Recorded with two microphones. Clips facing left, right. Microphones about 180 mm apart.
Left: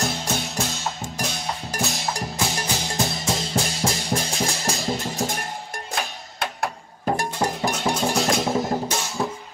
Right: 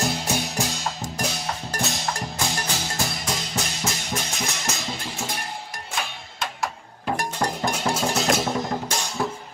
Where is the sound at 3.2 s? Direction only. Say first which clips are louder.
Left 4 dB; 30° left (ahead or behind).